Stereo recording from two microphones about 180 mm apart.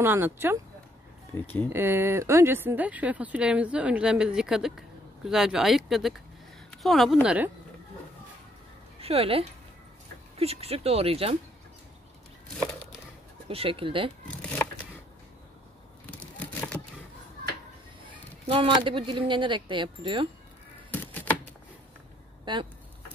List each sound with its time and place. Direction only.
0.0 s speech: 10° right (ahead or behind)
1.3 s speech: 10° left (ahead or behind)
1.7 s speech: 15° right (ahead or behind)
9.0 s speech: 35° right (ahead or behind)
13.5 s speech: 30° right (ahead or behind)
14.2 s a sound: 10° left (ahead or behind)
16.1 s a sound: 10° left (ahead or behind)
18.5 s speech: 30° right (ahead or behind)
20.9 s typewriter: 10° left (ahead or behind)
22.4 s speech: 25° right (ahead or behind)